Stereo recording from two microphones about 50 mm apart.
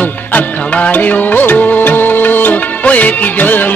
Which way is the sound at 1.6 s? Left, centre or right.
Left.